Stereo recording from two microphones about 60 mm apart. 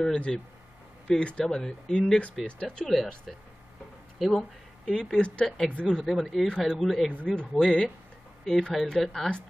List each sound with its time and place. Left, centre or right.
0.0 s speech: centre
5.2 s speech: centre
5.9 s speech: centre
7.1 s speech: centre